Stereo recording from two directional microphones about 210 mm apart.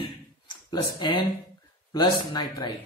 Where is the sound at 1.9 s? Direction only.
20° left (ahead or behind).